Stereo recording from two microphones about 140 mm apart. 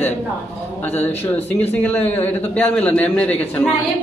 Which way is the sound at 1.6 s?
15° left (ahead or behind).